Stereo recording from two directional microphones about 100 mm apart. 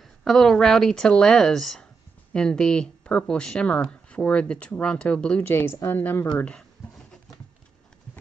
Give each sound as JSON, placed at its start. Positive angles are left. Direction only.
{"t": 0.2, "sound": "speech", "side_deg": 5}
{"t": 5.5, "sound": "a woman's voice", "side_deg": 25}